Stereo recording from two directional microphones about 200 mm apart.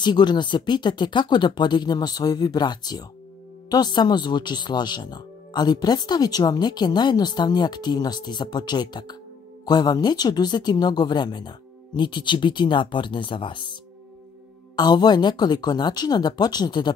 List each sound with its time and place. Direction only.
0.0 s speech: 20° left (ahead or behind)
14.8 s speech: 20° left (ahead or behind)